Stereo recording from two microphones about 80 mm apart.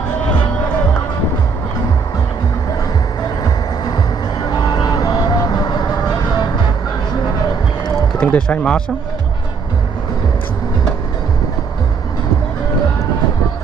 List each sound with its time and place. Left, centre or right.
3.4 s music: left
4.6 s vehicle: left
8.2 s speech: centre